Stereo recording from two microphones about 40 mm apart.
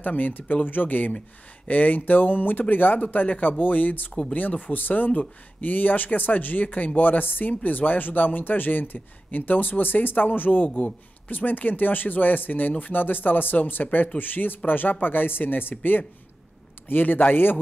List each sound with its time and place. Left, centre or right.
0.0 s speech: left